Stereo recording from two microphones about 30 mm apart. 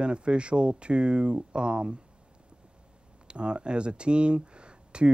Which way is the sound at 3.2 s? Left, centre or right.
Right.